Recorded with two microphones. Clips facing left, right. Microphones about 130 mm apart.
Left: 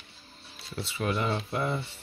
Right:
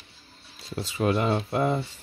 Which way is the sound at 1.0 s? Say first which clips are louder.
Right 5 dB; 40° right (ahead or behind).